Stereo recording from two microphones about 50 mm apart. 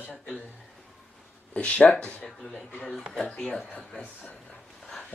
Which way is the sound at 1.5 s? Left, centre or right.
Left.